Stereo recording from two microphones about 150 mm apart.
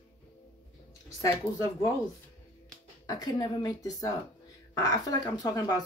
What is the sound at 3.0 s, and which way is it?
Speech, 25° left (ahead or behind).